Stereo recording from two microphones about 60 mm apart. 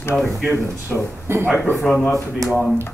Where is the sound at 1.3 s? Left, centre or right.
Right.